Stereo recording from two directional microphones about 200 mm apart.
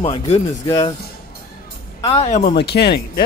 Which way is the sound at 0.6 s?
20° left (ahead or behind).